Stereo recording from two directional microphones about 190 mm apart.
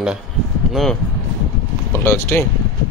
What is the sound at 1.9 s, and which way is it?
Speech, 10° left (ahead or behind).